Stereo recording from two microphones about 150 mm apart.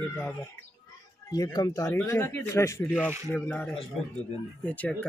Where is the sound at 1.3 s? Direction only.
25° left (ahead or behind).